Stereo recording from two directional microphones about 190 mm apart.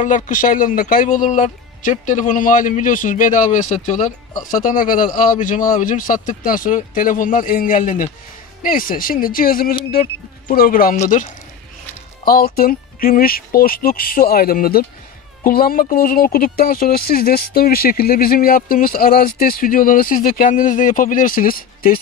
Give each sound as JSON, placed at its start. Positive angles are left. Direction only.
{"t": 0.0, "sound": "speech", "side_deg": 45}